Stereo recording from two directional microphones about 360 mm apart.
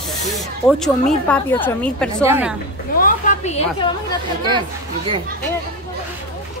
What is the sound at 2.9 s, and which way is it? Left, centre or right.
A woman's voice, left.